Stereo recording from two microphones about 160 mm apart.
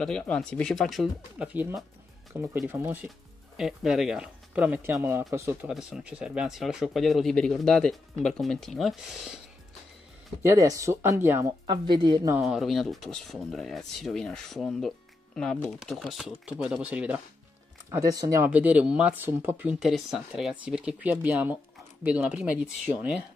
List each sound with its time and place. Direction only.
0.0 s speech: 5° left (ahead or behind)
1.5 s speech: 10° right (ahead or behind)
5.7 s speech: 5° right (ahead or behind)
10.4 s speech: 20° right (ahead or behind)
11.6 s a woman's voice: 30° right (ahead or behind)
12.4 s speech: centre (ahead or behind)
17.8 s a woman's voice: 20° right (ahead or behind)
18.5 s speech: 10° right (ahead or behind)